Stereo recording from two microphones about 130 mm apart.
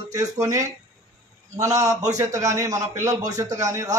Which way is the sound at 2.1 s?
25° right (ahead or behind).